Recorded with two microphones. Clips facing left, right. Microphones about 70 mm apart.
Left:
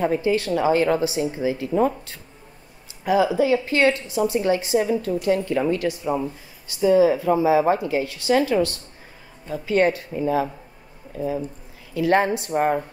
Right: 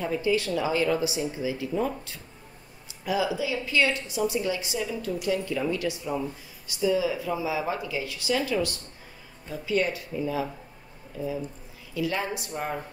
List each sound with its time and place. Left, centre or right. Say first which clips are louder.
0.0 s a woman's voice: left 5 dB; left
3.3 s a woman's voice: left 7 dB; left